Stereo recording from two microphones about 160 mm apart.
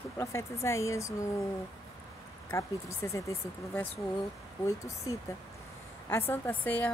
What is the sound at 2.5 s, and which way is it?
Speech, 20° left (ahead or behind).